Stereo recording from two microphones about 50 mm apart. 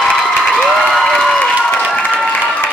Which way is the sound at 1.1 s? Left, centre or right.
Centre.